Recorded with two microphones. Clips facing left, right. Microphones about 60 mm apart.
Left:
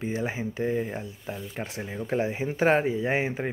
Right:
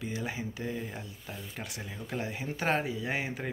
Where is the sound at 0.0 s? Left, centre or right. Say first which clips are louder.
Left 6 dB; left.